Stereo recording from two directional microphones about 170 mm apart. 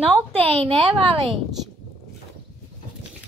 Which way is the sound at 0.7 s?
35° right (ahead or behind).